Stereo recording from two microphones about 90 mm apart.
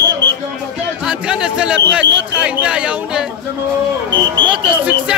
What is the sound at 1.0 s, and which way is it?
Speech, 10° right (ahead or behind).